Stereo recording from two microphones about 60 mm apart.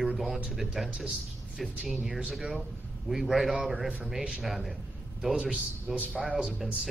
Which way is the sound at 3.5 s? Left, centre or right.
Centre.